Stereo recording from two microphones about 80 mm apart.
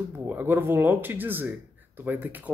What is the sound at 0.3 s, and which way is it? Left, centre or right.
Speech, right.